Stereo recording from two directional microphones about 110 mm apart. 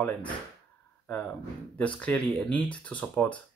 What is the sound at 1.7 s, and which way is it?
Speech, 10° left (ahead or behind).